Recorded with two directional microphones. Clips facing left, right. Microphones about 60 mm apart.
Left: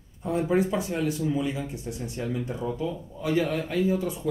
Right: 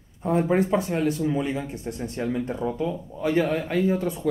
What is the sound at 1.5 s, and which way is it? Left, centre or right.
Speech, right.